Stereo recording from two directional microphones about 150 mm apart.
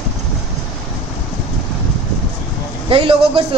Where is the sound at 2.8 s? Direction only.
35° right (ahead or behind).